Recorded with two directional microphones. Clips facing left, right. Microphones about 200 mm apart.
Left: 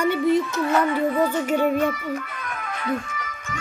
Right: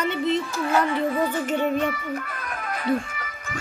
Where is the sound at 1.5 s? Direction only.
10° left (ahead or behind).